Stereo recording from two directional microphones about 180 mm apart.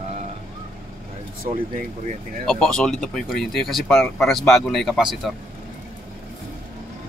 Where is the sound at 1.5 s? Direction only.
45° right (ahead or behind).